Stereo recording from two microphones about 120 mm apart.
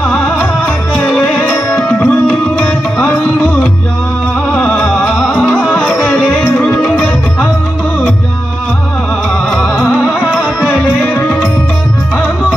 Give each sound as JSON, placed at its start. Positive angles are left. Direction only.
{"t": 1.5, "sound": "music", "side_deg": 15}
{"t": 5.0, "sound": "music", "side_deg": 0}
{"t": 6.6, "sound": "music", "side_deg": 15}